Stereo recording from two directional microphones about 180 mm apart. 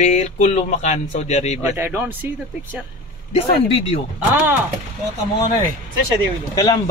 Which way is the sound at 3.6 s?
35° left (ahead or behind).